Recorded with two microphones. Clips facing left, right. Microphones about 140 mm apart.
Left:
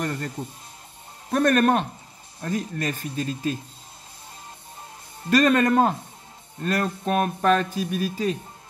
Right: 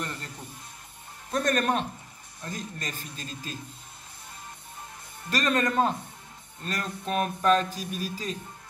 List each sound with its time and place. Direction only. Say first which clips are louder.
1.3 s speech: left 6 dB; 55° left (ahead or behind)
5.3 s speech: left 8 dB; 50° left (ahead or behind)